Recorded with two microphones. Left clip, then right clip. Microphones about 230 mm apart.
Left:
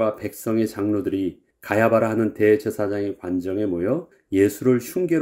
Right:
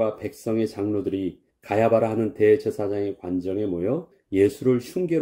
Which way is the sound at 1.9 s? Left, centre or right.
Left.